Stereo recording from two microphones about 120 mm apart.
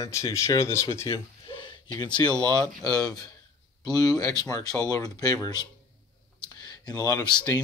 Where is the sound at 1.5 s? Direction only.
45° left (ahead or behind).